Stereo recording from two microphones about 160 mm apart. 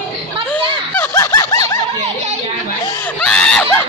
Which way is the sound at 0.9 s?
15° left (ahead or behind).